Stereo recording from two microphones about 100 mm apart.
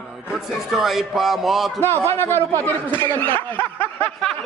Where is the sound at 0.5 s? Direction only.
Centre (ahead or behind).